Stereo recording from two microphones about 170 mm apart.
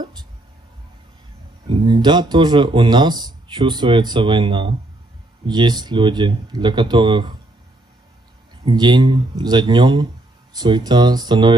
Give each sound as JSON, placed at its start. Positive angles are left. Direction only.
{"t": 1.7, "sound": "speech", "side_deg": -30}
{"t": 8.6, "sound": "speech", "side_deg": -25}